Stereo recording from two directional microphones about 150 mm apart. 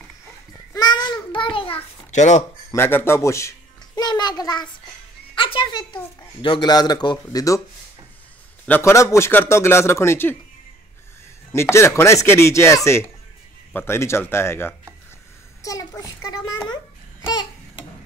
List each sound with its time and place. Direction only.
0.7 s child singing: 30° left (ahead or behind)
2.0 s speech: 55° left (ahead or behind)
2.7 s a child's voice: 15° left (ahead or behind)
8.6 s a man's voice: 15° left (ahead or behind)
11.5 s a man's voice: 15° left (ahead or behind)
16.6 s babbling: 25° left (ahead or behind)